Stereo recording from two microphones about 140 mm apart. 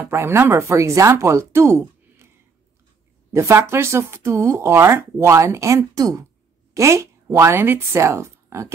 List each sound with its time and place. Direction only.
0.0 s speech: 20° right (ahead or behind)
3.3 s speech: 20° right (ahead or behind)